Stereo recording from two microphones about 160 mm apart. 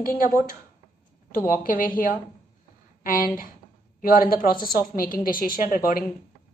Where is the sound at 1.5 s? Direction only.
60° left (ahead or behind).